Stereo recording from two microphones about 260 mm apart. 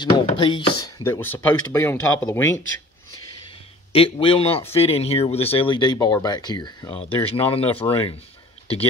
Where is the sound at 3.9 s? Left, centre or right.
Left.